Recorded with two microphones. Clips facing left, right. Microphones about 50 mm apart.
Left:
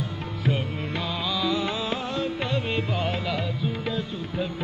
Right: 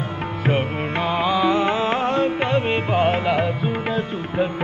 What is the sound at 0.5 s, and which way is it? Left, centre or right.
Music, right.